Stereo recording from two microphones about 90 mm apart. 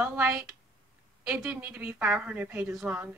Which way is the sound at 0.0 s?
20° right (ahead or behind).